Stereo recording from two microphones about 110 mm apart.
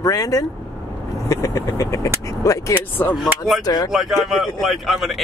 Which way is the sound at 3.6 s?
35° left (ahead or behind).